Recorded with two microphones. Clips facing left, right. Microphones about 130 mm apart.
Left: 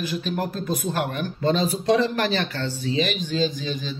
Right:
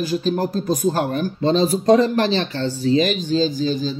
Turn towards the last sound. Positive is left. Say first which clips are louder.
# right 6 dB
turn(degrees=-35)  # may be behind; listen again after turning